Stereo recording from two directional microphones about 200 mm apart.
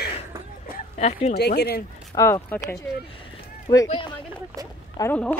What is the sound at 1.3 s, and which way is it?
Speech, 55° left (ahead or behind).